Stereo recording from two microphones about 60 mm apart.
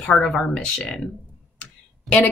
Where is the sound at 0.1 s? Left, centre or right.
Centre.